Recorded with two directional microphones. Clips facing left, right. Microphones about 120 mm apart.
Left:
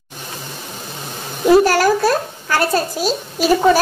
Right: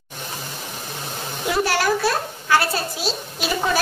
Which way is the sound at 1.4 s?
45° left (ahead or behind).